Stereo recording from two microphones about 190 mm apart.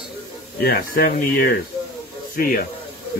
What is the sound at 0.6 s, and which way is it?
Speech, 50° left (ahead or behind).